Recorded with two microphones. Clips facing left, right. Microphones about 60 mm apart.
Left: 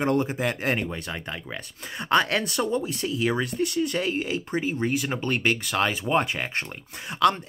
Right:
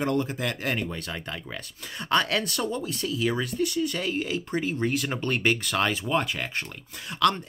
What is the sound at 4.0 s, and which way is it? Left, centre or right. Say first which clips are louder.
Speech: left 2 dB; centre.